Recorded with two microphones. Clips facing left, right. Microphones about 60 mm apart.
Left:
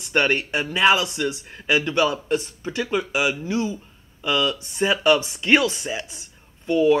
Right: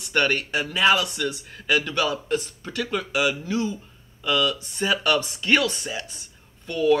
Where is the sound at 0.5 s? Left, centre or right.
Centre.